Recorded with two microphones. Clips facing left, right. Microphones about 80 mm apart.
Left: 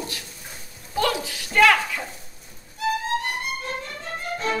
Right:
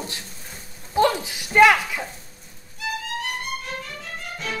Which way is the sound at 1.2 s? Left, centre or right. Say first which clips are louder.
Right 1 dB; centre.